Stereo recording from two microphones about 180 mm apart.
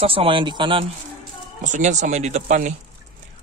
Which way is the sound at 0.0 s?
30° right (ahead or behind).